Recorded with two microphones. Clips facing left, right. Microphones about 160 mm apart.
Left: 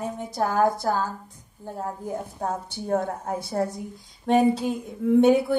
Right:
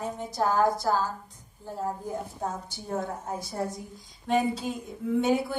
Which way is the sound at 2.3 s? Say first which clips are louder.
Left 4 dB; 55° left (ahead or behind).